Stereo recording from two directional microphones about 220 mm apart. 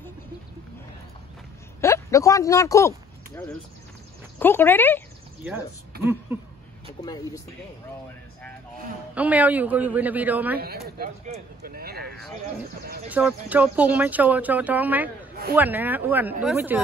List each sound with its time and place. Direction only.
1.8 s speech: 15° left (ahead or behind)
4.4 s speech: 10° left (ahead or behind)
5.4 s speech: 10° right (ahead or behind)
5.9 s a sound: 45° right (ahead or behind)
7.0 s speech: 15° left (ahead or behind)
9.1 s speech: 5° right (ahead or behind)
10.6 s speech: 45° right (ahead or behind)
13.1 s speech: 5° right (ahead or behind)